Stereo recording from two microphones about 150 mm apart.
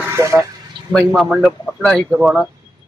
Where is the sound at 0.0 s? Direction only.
20° right (ahead or behind).